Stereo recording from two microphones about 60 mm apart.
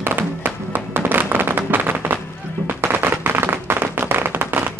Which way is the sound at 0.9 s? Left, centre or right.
Right.